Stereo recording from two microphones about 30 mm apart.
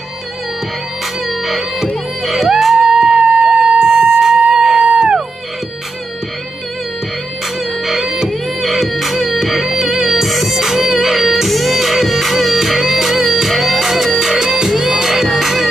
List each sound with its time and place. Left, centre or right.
1.2 s music: centre
2.6 s music: centre
3.2 s a sound: right
3.8 s music: centre; by 5.2 s right
7.8 s music: centre
8.3 s music: centre
14.4 s music: centre
14.7 s music: centre